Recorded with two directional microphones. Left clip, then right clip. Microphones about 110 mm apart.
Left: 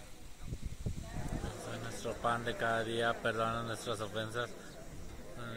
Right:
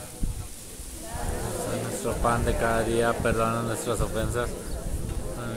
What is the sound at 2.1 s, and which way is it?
Speech, 30° left (ahead or behind).